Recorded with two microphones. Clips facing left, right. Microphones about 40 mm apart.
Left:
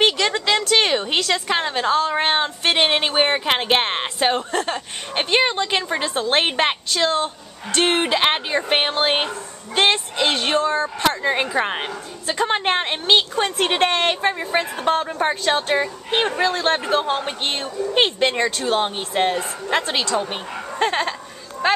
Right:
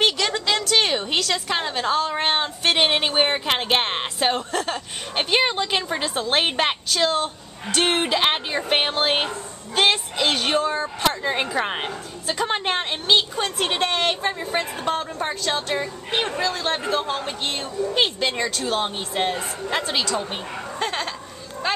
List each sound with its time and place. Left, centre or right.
0.0 s a woman's voice: centre